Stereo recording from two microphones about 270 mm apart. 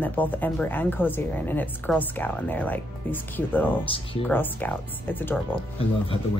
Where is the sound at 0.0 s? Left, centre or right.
Centre.